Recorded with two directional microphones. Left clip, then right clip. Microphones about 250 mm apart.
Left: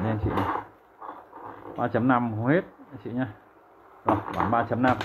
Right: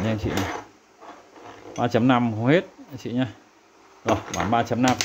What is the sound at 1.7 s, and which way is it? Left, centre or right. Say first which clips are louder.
Speech: right 3 dB; right.